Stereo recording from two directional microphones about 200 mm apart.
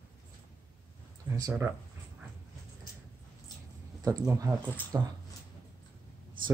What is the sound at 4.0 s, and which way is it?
Speech, 15° right (ahead or behind).